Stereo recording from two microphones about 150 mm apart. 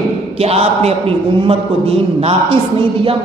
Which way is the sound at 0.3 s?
40° right (ahead or behind).